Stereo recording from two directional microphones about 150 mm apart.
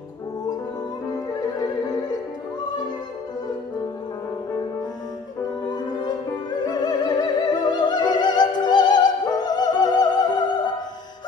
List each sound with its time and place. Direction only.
1.3 s music: 25° left (ahead or behind)
5.7 s music: 30° left (ahead or behind)